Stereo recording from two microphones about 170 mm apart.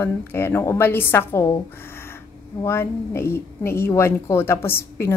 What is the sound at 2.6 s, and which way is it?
A woman's voice, 15° left (ahead or behind).